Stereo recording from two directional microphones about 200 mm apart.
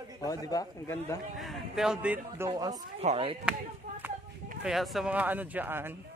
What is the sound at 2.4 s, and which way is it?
Speech, 20° right (ahead or behind).